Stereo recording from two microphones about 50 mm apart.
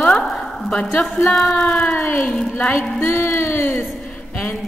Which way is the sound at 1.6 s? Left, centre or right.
Left.